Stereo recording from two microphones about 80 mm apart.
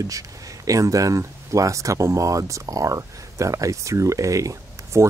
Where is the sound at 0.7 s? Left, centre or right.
Right.